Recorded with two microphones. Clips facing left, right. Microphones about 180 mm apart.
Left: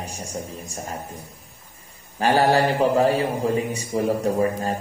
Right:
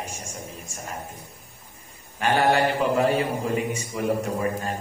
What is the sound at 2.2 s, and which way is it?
A man's voice, 35° left (ahead or behind).